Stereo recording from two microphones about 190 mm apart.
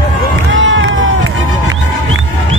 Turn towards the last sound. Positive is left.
turn(degrees=-90)